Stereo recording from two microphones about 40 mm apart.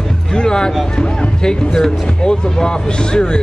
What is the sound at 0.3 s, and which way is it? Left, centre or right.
Music, centre.